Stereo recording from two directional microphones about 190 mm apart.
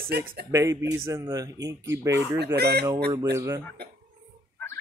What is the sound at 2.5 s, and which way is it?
Speech, 60° right (ahead or behind).